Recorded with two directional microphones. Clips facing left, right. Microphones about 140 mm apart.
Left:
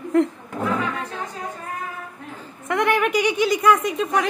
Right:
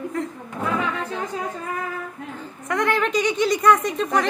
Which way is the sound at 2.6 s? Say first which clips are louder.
Left 2 dB; 20° left (ahead or behind).